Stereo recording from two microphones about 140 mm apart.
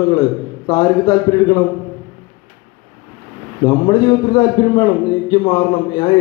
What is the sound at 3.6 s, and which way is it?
A man's voice, 30° left (ahead or behind).